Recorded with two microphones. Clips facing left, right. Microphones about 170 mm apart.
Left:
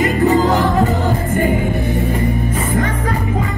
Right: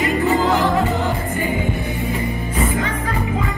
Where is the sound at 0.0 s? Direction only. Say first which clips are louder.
Left 4 dB; 40° left (ahead or behind).